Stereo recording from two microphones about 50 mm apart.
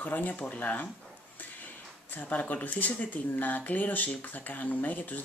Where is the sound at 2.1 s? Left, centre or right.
Left.